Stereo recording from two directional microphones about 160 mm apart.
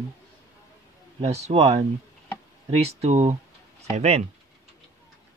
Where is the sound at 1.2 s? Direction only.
45° right (ahead or behind).